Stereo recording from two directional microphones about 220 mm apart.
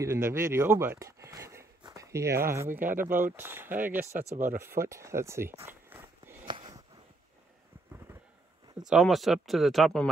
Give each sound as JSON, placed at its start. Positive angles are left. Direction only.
{"t": 0.0, "sound": "speech", "side_deg": -10}
{"t": 3.1, "sound": "speech", "side_deg": -35}
{"t": 3.3, "sound": "speech", "side_deg": -10}
{"t": 6.4, "sound": "a sound", "side_deg": -20}
{"t": 8.7, "sound": "speech", "side_deg": 0}